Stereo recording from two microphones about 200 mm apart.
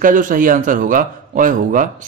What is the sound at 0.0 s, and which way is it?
Speech, 40° right (ahead or behind).